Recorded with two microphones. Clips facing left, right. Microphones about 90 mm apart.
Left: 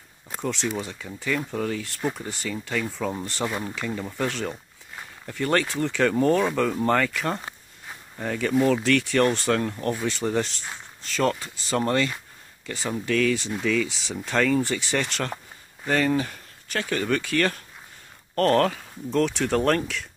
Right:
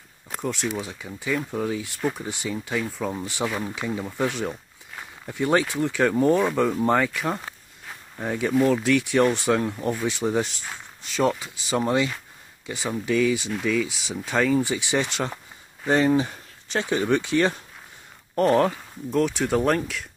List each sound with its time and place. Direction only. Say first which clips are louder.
0.3 s speech: even; 5° right (ahead or behind)
3.7 s a sound: right 1 dB; 10° right (ahead or behind)
5.3 s speech: right 2 dB; 10° right (ahead or behind)
18.3 s speech: right 1 dB; 10° right (ahead or behind)